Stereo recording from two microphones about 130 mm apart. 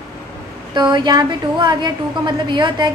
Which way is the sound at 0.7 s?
35° right (ahead or behind).